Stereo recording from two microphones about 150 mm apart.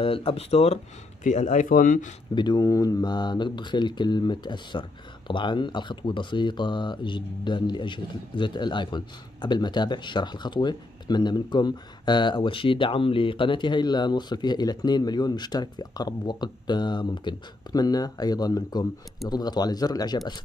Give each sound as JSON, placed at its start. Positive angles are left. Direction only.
{"t": 0.0, "sound": "speech", "side_deg": 40}
{"t": 2.3, "sound": "speech", "side_deg": 30}